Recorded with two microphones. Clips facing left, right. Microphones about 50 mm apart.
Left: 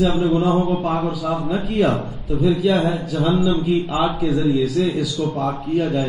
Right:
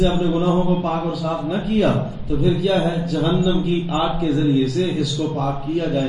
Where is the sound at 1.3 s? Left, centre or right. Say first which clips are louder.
Right 1 dB; centre.